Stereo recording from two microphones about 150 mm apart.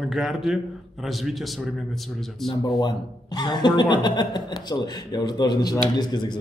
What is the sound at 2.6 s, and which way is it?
Speech, 30° left (ahead or behind).